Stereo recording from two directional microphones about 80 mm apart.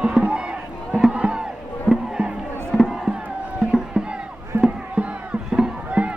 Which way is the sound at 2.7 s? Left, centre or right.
Centre.